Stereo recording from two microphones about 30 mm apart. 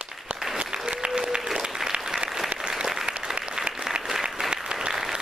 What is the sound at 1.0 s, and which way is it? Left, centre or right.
Applause, right.